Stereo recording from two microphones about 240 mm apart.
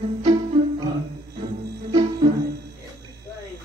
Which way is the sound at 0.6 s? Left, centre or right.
Right.